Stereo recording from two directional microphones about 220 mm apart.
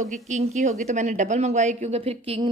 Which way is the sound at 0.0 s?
30° right (ahead or behind).